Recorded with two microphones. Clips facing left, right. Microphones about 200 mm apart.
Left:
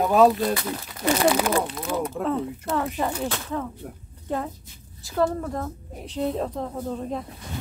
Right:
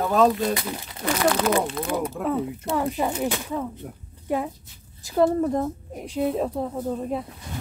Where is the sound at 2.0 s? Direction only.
5° right (ahead or behind).